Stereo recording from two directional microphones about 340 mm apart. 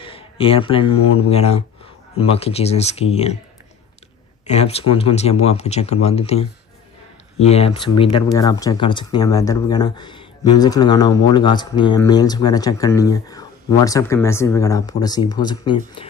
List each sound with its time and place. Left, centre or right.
0.0 s speech: centre
4.5 s speech: centre